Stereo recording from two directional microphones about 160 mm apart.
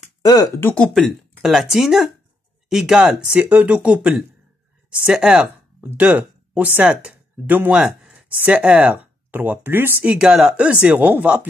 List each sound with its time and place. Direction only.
0.2 s speech: 25° left (ahead or behind)
0.6 s speech: 10° left (ahead or behind)
0.9 s speech: centre (ahead or behind)